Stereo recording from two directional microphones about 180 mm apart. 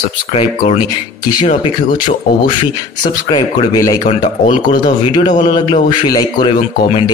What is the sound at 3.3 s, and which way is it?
Speech, 25° left (ahead or behind).